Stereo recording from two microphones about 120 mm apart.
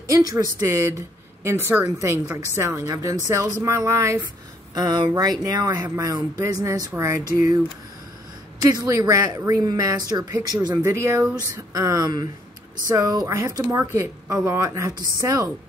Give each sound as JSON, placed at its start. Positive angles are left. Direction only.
{"t": 0.1, "sound": "speech", "side_deg": -35}
{"t": 4.7, "sound": "speech", "side_deg": -40}
{"t": 8.8, "sound": "speech", "side_deg": -25}
{"t": 10.8, "sound": "speech", "side_deg": -25}